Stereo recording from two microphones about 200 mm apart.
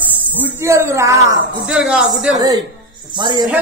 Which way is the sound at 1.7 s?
5° right (ahead or behind).